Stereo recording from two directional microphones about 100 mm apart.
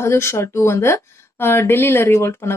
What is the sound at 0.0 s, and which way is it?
Speech, 25° left (ahead or behind).